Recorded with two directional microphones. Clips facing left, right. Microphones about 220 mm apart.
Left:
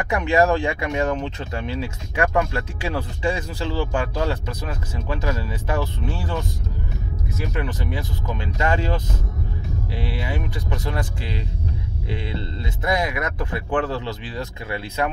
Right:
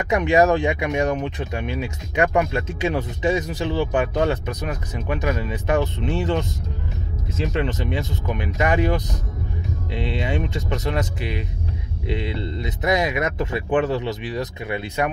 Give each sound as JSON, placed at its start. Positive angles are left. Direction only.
{"t": 0.0, "sound": "speech", "side_deg": -20}
{"t": 7.4, "sound": "speech", "side_deg": -25}